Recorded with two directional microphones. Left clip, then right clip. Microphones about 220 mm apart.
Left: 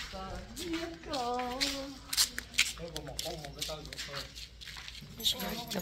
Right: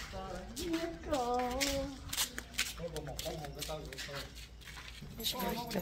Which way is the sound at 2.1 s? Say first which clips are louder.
Left 6 dB; 20° right (ahead or behind).